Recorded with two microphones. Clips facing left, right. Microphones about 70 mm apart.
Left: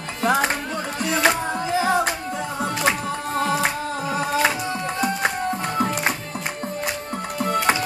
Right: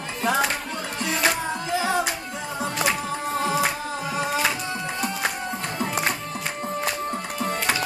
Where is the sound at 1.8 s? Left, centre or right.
Left.